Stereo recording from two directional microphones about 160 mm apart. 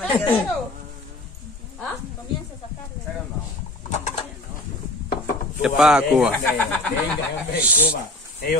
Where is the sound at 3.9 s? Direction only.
45° left (ahead or behind).